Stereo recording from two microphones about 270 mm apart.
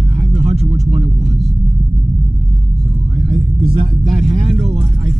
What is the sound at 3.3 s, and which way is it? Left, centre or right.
Vehicle, right.